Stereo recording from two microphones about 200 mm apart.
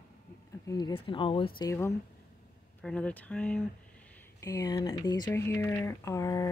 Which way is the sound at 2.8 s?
5° left (ahead or behind).